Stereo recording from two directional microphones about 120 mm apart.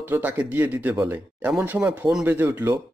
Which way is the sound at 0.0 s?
15° right (ahead or behind).